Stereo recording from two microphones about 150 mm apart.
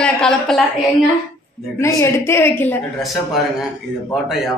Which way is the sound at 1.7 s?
20° left (ahead or behind).